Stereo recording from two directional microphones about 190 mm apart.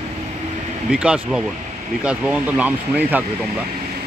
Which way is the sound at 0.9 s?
5° right (ahead or behind).